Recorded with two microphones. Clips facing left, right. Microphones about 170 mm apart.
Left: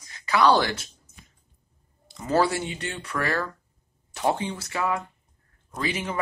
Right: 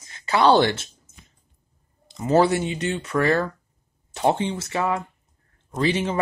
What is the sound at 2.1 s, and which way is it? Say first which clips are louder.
Speech: right 5 dB; 20° right (ahead or behind).